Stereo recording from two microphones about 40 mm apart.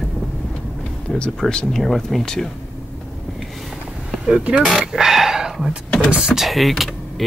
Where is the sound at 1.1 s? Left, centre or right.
Left.